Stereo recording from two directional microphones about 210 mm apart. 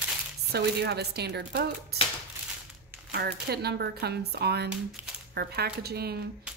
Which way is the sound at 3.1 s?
50° right (ahead or behind).